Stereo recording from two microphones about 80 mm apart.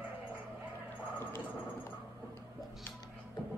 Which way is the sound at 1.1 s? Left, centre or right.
Left.